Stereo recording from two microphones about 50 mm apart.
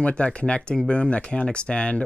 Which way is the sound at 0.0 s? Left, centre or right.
Left.